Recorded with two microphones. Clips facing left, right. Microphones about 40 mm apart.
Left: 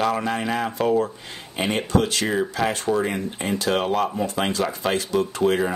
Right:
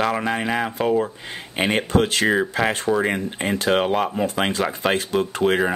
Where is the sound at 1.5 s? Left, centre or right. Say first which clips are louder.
Right 2 dB; right.